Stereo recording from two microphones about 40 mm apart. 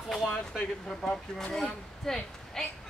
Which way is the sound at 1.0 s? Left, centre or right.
Left.